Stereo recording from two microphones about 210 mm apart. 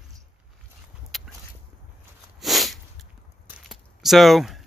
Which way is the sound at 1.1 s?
Centre (ahead or behind).